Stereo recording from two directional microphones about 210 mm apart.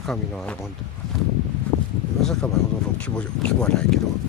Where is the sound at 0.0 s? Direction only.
5° left (ahead or behind).